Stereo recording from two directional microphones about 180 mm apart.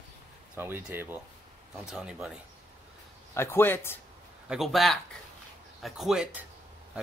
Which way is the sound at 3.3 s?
15° left (ahead or behind).